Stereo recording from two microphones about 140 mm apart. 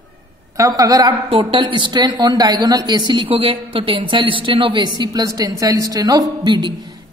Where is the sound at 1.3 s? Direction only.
40° right (ahead or behind).